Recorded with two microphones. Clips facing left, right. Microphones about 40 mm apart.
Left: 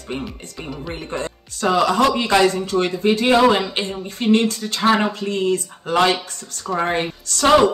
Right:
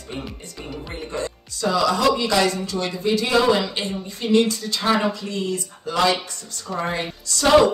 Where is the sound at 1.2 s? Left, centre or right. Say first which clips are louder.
Left 4 dB; left.